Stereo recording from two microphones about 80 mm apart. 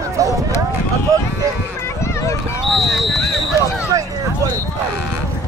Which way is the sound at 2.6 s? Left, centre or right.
Centre.